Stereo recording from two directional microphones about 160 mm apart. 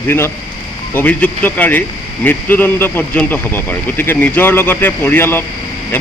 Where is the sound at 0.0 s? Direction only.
15° left (ahead or behind).